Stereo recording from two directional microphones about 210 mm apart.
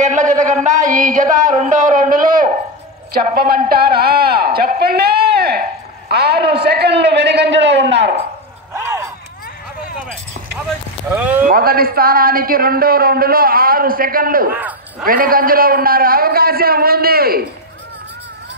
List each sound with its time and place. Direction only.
0.0 s a man's voice: 35° right (ahead or behind); by 7.4 s 55° right (ahead or behind)
8.7 s a sound: 15° right (ahead or behind)
11.1 s speech: 10° right (ahead or behind)
11.4 s a man's voice: 45° right (ahead or behind)
14.5 s a man's voice: 10° right (ahead or behind)
15.0 s a man's voice: 40° right (ahead or behind)